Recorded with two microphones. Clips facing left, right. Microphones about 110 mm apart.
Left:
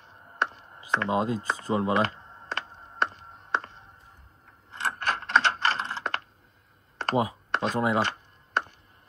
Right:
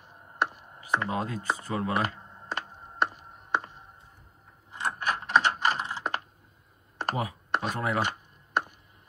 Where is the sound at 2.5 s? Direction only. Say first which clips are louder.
Even; 10° right (ahead or behind).